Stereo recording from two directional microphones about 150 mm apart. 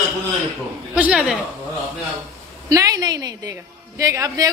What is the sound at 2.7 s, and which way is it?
A woman's voice, 25° right (ahead or behind).